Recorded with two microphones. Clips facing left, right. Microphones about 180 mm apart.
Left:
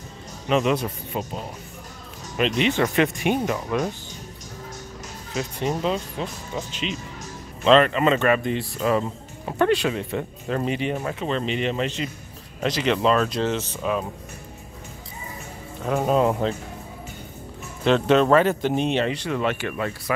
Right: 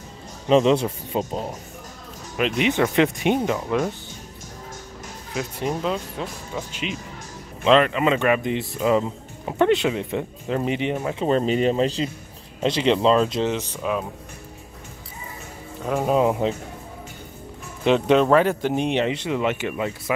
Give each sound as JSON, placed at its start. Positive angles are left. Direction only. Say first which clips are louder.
{"t": 0.5, "sound": "speech", "louder": "right 4 dB", "side_deg": -30}
{"t": 2.3, "sound": "speech", "louder": "even", "side_deg": -5}
{"t": 2.7, "sound": "speech", "louder": "right 2 dB", "side_deg": -15}
{"t": 5.3, "sound": "speech", "louder": "even", "side_deg": -5}
{"t": 11.2, "sound": "speech", "louder": "right 7 dB", "side_deg": -40}
{"t": 15.8, "sound": "speech", "louder": "even", "side_deg": 0}
{"t": 17.8, "sound": "speech", "louder": "right 1 dB", "side_deg": -10}